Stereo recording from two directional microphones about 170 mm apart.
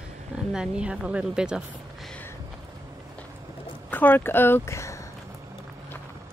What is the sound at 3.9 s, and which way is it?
Speech, 10° left (ahead or behind).